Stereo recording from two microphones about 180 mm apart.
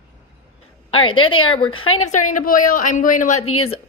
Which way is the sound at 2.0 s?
45° left (ahead or behind).